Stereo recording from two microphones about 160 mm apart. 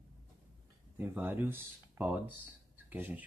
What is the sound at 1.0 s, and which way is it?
Speech, 15° right (ahead or behind).